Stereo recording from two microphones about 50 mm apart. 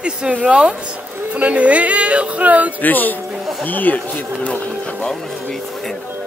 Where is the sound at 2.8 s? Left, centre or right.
Left.